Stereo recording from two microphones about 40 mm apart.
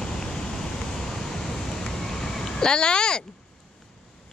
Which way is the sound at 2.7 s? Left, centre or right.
Left.